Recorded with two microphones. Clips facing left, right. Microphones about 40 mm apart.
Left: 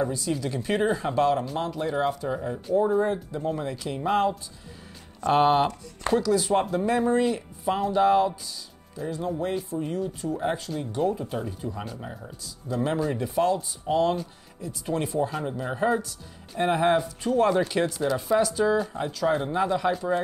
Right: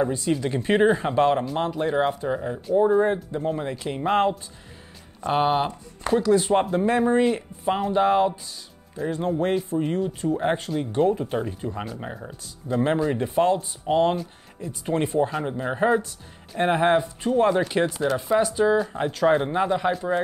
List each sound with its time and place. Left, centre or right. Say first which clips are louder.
0.0 s speech: right 4 dB; right
5.2 s speech: left 1 dB; centre
6.2 s speech: right 3 dB; right
9.0 s speech: right 5 dB; right
18.9 s speech: right 5 dB; right